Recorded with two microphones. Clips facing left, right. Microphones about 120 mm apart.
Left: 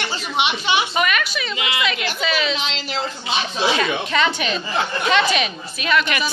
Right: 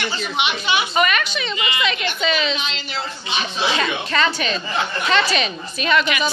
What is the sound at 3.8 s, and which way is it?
A woman's voice, 10° left (ahead or behind).